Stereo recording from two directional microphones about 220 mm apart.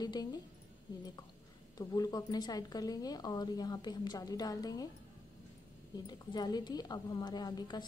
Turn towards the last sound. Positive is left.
turn(degrees=20)  # may be behind; listen again after turning